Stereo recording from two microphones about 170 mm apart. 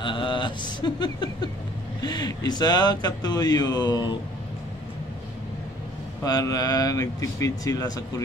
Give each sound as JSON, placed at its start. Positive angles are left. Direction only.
{"t": 0.0, "sound": "speech", "side_deg": 30}
{"t": 6.2, "sound": "speech", "side_deg": 20}